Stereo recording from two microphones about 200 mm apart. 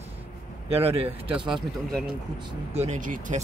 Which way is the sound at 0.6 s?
30° right (ahead or behind).